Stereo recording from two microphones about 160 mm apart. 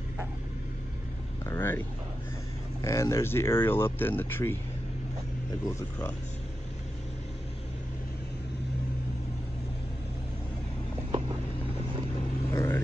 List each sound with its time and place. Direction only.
1.4 s speech: 15° left (ahead or behind)
2.8 s speech: 20° left (ahead or behind)
5.8 s speech: 20° left (ahead or behind)
11.1 s vehicle: 35° right (ahead or behind)
12.5 s vehicle: 15° left (ahead or behind)